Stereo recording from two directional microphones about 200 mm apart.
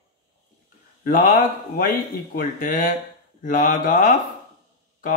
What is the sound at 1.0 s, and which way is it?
Speech, 40° left (ahead or behind).